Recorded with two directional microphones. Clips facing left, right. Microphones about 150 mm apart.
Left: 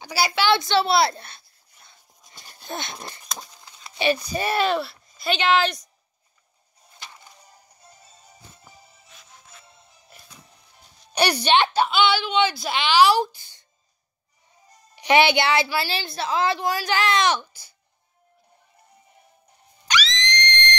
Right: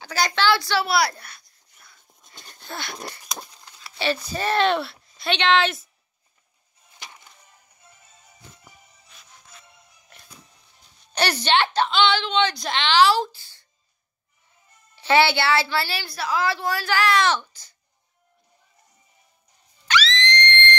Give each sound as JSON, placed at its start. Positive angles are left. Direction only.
{"t": 0.0, "sound": "a woman's voice", "side_deg": 10}
{"t": 0.5, "sound": "a woman's voice", "side_deg": 20}
{"t": 1.8, "sound": "a sound", "side_deg": 25}
{"t": 2.6, "sound": "wheeze", "side_deg": 20}
{"t": 3.6, "sound": "speech", "side_deg": 20}
{"t": 7.4, "sound": "music", "side_deg": 35}
{"t": 11.1, "sound": "a woman's voice", "side_deg": 15}
{"t": 15.0, "sound": "a woman's voice", "side_deg": 15}
{"t": 19.9, "sound": "a sound", "side_deg": 15}